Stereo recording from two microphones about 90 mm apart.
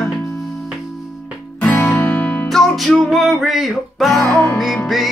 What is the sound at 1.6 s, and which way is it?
Music, 15° left (ahead or behind).